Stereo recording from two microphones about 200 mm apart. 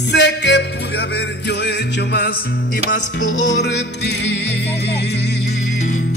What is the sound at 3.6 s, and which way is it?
Music, 60° left (ahead or behind).